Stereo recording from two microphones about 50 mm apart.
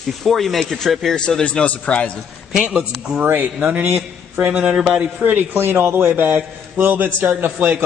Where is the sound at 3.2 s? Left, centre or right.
Right.